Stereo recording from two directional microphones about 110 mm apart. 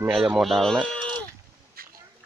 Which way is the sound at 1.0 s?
45° right (ahead or behind).